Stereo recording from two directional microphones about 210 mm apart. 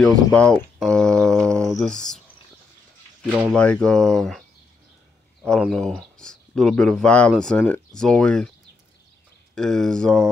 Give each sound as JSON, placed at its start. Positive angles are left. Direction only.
{"t": 0.3, "sound": "a sound", "side_deg": 5}
{"t": 1.8, "sound": "speech", "side_deg": 5}
{"t": 3.5, "sound": "speech", "side_deg": 5}
{"t": 9.6, "sound": "speech", "side_deg": 5}